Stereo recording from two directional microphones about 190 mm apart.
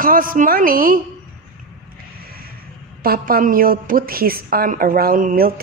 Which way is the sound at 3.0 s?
50° right (ahead or behind).